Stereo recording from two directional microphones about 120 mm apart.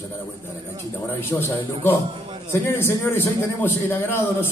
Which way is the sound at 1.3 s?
20° left (ahead or behind).